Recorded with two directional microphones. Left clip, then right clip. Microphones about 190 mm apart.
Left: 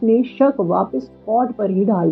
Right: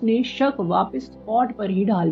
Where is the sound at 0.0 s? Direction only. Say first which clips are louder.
Left 6 dB; 15° right (ahead or behind).